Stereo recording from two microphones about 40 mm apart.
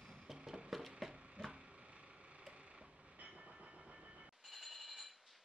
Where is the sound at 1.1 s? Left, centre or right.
Centre.